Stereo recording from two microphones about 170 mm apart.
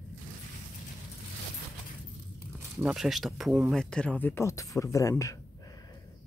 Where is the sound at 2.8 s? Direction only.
5° right (ahead or behind); by 5.4 s 20° left (ahead or behind).